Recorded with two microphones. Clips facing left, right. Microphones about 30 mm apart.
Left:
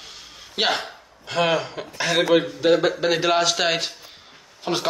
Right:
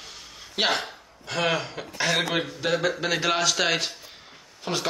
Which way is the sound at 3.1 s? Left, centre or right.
Centre.